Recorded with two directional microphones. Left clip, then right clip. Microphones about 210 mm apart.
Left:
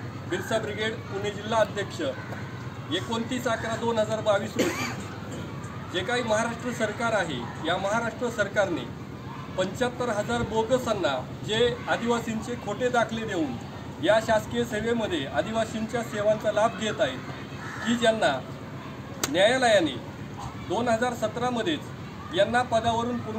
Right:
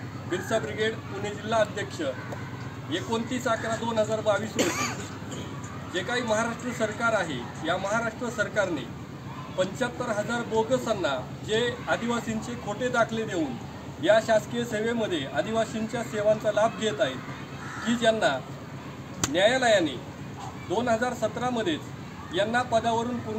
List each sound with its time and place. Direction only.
0.3 s a man's voice: centre (ahead or behind)
4.6 s speech: 25° right (ahead or behind)
5.9 s a man's voice: centre (ahead or behind)